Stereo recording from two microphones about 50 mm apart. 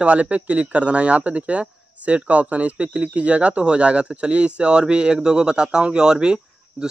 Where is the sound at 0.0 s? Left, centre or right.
Right.